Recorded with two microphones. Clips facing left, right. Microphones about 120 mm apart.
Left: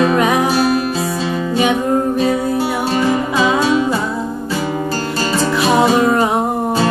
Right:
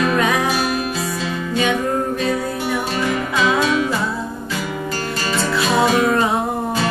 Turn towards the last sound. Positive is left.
turn(degrees=25)  # may be behind; listen again after turning